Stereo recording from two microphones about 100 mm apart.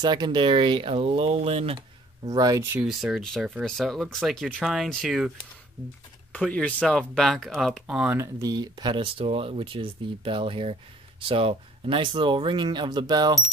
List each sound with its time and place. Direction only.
0.0 s speech: 45° right (ahead or behind); by 1.8 s 75° right (ahead or behind)
2.2 s speech: 35° right (ahead or behind)
2.8 s speech: centre (ahead or behind)
6.3 s speech: 10° left (ahead or behind); by 8.1 s 5° right (ahead or behind)
8.1 s speech: 25° right (ahead or behind)
8.5 s speech: 45° right (ahead or behind)